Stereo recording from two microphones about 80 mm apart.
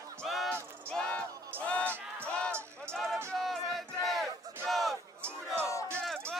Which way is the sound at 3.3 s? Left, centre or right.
Centre.